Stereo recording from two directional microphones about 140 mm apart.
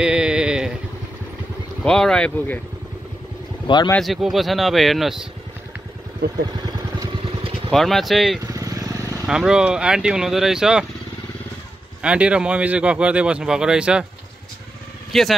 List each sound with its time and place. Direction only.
0.0 s a sound: 5° right (ahead or behind)
1.8 s speech: 5° left (ahead or behind)
3.6 s speech: 30° left (ahead or behind)
4.0 s speech: centre (ahead or behind)
6.6 s vehicle: 30° right (ahead or behind)
7.7 s speech: centre (ahead or behind)
8.5 s vehicle: 25° right (ahead or behind)
9.2 s speech: 5° right (ahead or behind)
12.0 s speech: 10° right (ahead or behind)
15.1 s speech: centre (ahead or behind)